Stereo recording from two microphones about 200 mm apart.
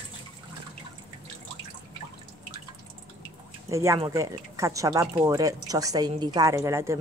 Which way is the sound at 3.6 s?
15° right (ahead or behind).